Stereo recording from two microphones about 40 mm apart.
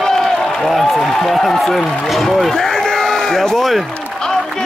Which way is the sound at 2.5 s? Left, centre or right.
Centre.